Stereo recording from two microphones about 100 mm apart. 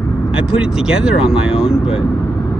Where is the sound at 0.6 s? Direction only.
5° right (ahead or behind).